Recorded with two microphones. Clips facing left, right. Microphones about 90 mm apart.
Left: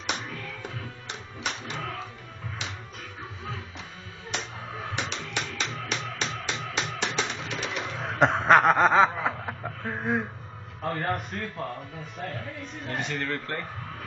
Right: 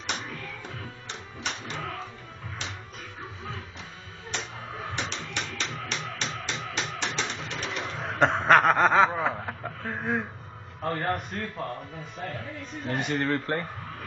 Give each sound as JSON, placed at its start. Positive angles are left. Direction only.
{"t": 0.1, "sound": "music", "side_deg": 0}
{"t": 1.8, "sound": "music", "side_deg": 0}
{"t": 4.4, "sound": "music", "side_deg": 0}
{"t": 7.4, "sound": "a sound", "side_deg": 5}
{"t": 9.2, "sound": "chuckle", "side_deg": 0}
{"t": 10.8, "sound": "a man's voice", "side_deg": 0}
{"t": 13.1, "sound": "a man's voice", "side_deg": -20}